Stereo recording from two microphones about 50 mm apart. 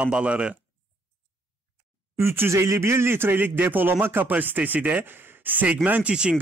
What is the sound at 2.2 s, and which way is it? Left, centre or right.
Speech, right.